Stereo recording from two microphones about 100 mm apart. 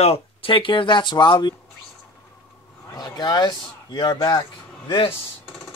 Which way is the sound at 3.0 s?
45° left (ahead or behind).